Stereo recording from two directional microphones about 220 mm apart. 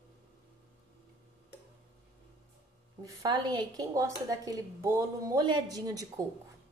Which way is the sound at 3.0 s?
15° right (ahead or behind).